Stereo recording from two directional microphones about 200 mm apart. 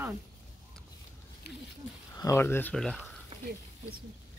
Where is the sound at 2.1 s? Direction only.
15° left (ahead or behind).